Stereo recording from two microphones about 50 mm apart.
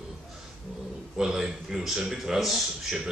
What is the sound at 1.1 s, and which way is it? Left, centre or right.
A man's voice, centre.